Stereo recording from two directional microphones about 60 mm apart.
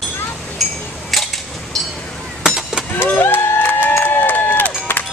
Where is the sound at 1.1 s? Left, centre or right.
Centre.